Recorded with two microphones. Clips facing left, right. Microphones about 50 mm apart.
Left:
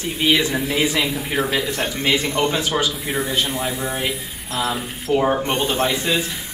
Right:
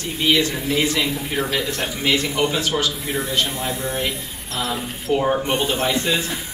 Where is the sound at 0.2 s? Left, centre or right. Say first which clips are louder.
Left 1 dB; centre.